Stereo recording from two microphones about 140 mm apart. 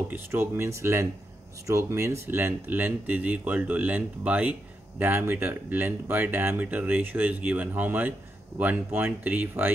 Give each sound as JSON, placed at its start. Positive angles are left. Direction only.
{"t": 0.1, "sound": "speech", "side_deg": -15}